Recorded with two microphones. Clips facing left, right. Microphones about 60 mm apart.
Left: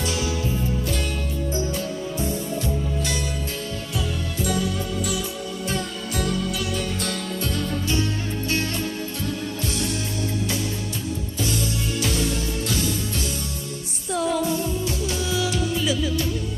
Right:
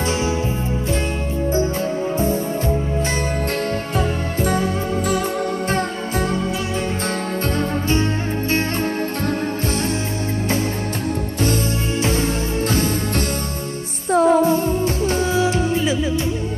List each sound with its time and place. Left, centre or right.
4.4 s music: right
7.9 s music: right
12.0 s music: right
14.1 s music: right